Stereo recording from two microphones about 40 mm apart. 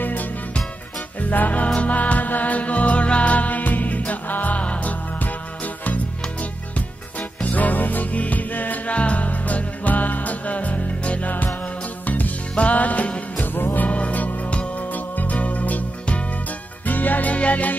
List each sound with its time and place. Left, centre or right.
0.0 s music: left
1.3 s music: left
7.2 s music: left
8.9 s music: left
12.5 s music: left
13.4 s music: left
13.8 s music: left